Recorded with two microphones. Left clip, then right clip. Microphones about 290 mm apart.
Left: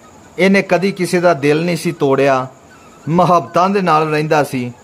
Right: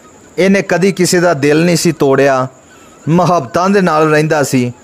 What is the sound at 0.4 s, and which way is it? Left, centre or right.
Speech, centre.